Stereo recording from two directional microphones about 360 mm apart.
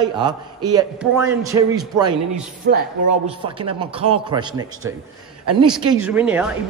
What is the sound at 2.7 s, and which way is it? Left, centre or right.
Speech, right.